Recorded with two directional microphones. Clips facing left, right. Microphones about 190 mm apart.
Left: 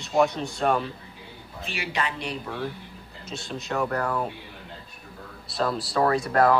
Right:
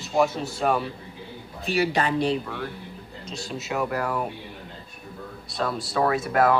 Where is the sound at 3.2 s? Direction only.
Centre (ahead or behind).